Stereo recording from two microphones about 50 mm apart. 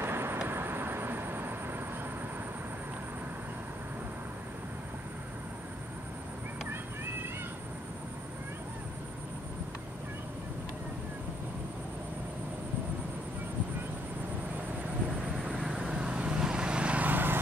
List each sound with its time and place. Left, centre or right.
0.0 s vehicle: right
15.6 s vehicle: centre
16.0 s vehicle: right